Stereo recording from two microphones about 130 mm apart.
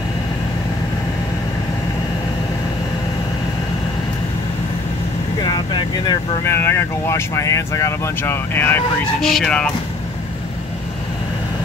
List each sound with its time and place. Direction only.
5.4 s vehicle: 35° left (ahead or behind)
6.4 s speech: 20° left (ahead or behind)